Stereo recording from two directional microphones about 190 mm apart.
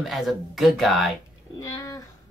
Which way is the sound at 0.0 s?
Centre (ahead or behind).